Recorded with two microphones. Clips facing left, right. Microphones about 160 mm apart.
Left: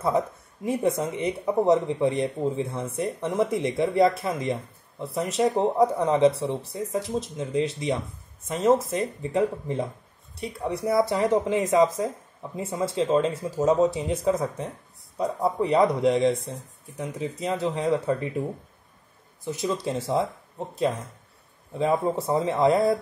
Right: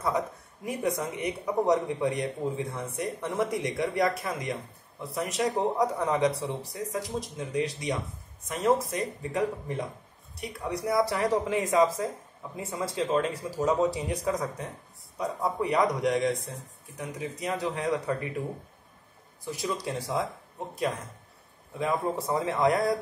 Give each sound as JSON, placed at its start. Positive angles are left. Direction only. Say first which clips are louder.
{"t": 0.7, "sound": "speech", "louder": "left 5 dB", "side_deg": 25}
{"t": 19.4, "sound": "speech", "louder": "left 5 dB", "side_deg": 20}
{"t": 21.7, "sound": "speech", "louder": "left 5 dB", "side_deg": 30}